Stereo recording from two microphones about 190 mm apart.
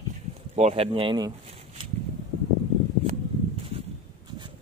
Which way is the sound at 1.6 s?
30° right (ahead or behind).